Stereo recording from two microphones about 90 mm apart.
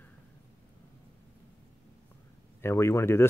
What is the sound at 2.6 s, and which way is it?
Speech, 30° left (ahead or behind).